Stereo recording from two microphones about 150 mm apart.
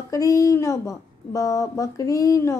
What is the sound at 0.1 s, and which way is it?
A woman's voice, 25° left (ahead or behind).